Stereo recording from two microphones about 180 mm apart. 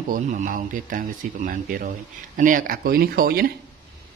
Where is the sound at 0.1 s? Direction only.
45° right (ahead or behind).